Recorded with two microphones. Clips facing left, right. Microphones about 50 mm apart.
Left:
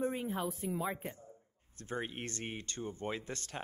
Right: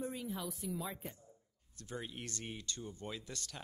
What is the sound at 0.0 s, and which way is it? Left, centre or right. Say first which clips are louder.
Speech: left 6 dB; left.